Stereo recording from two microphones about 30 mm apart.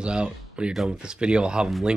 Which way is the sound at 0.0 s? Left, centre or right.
Right.